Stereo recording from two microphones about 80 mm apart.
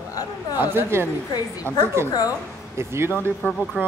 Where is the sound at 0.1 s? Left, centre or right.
Left.